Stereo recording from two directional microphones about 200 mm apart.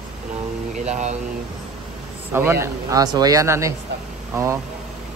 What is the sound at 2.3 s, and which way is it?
Speech, 10° right (ahead or behind).